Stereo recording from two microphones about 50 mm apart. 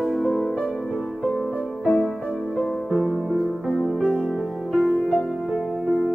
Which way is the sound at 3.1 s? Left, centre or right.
Centre.